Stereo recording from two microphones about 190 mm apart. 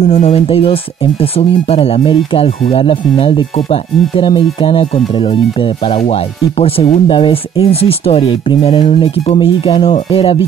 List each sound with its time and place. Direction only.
0.0 s speech: 30° left (ahead or behind)
9.9 s music: 30° left (ahead or behind)